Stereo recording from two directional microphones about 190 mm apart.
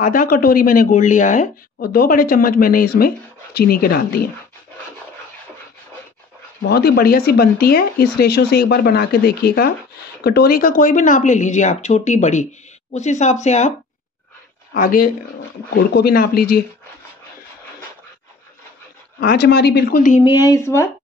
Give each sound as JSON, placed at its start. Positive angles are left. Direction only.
{"t": 0.0, "sound": "speech", "side_deg": 45}
{"t": 6.7, "sound": "speech", "side_deg": 55}
{"t": 14.7, "sound": "speech", "side_deg": 50}
{"t": 15.7, "sound": "speech", "side_deg": 60}
{"t": 19.1, "sound": "speech", "side_deg": 60}
{"t": 20.2, "sound": "speech", "side_deg": 15}